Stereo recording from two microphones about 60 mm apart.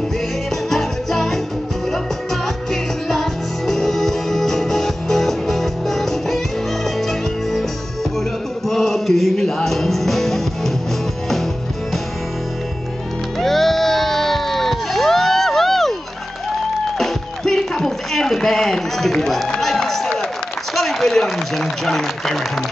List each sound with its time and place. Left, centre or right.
0.7 s music: centre
2.4 s music: centre
8.6 s music: centre
13.4 s music: centre
17.0 s music: centre
20.7 s a sound: centre